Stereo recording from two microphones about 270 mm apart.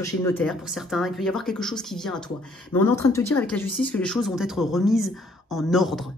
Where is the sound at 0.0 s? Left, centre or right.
Centre.